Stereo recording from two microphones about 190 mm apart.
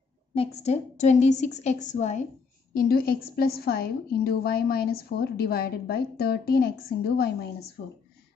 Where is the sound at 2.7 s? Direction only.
50° left (ahead or behind).